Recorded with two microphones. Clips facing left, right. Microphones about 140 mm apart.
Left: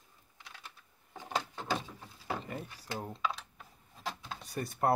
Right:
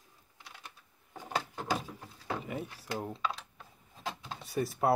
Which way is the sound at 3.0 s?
Centre (ahead or behind).